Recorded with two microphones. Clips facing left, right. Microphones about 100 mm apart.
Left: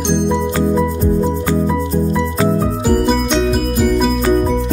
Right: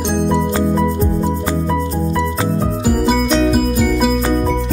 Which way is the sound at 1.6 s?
Centre (ahead or behind).